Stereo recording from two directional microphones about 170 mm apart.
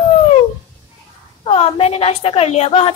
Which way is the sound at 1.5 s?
35° left (ahead or behind).